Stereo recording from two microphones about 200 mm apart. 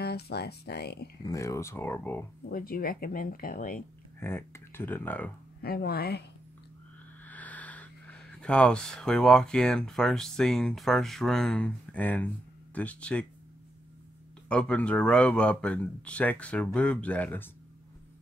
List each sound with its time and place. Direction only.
0.0 s speech: 55° left (ahead or behind)
1.2 s speech: 15° left (ahead or behind)
2.5 s speech: 45° left (ahead or behind)
4.2 s speech: 10° left (ahead or behind)
5.6 s speech: 50° left (ahead or behind)
7.2 s speech: 10° left (ahead or behind)
14.5 s speech: 5° left (ahead or behind)